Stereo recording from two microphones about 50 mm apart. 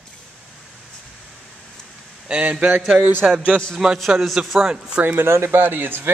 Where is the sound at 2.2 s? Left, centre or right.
Right.